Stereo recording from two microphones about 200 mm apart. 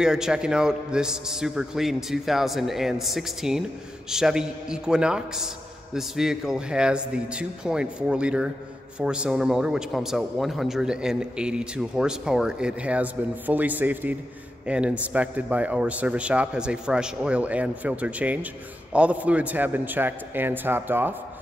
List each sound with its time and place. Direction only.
0.0 s a man's voice: 5° right (ahead or behind)